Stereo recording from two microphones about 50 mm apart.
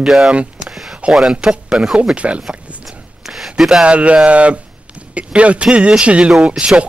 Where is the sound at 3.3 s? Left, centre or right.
Centre.